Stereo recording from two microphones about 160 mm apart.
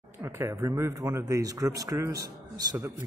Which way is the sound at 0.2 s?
15° right (ahead or behind).